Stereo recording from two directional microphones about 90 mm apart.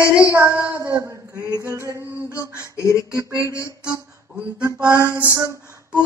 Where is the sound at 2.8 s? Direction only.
35° left (ahead or behind).